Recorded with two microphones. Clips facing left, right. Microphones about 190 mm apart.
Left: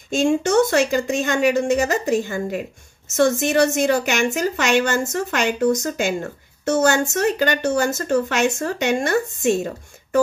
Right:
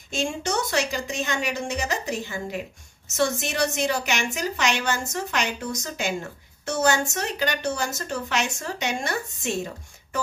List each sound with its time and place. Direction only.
0.1 s a woman's voice: 50° left (ahead or behind)